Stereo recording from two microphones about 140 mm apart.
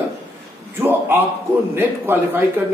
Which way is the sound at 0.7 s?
15° right (ahead or behind).